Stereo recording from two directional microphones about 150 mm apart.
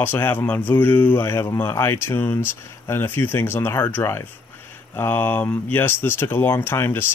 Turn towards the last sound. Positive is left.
turn(degrees=15)  # may be behind; listen again after turning